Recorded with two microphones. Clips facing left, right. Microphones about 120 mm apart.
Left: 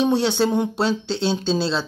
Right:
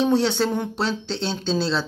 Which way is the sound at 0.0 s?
5° left (ahead or behind).